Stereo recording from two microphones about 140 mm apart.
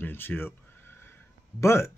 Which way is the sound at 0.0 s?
15° left (ahead or behind).